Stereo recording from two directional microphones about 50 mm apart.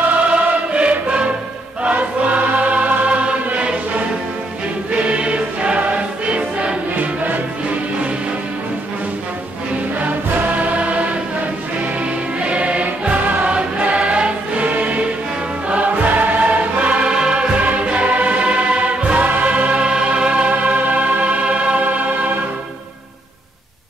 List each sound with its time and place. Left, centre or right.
0.1 s choir: right
4.9 s music: right
9.9 s music: right
12.4 s choir: right
15.7 s music: right
17.6 s choir: right